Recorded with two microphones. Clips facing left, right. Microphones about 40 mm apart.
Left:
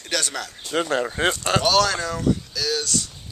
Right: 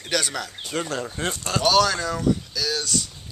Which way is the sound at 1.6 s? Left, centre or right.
Centre.